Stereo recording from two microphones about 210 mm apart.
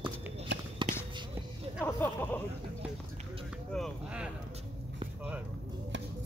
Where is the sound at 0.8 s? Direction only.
25° right (ahead or behind).